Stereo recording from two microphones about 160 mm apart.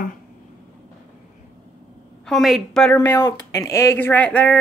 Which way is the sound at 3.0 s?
25° left (ahead or behind).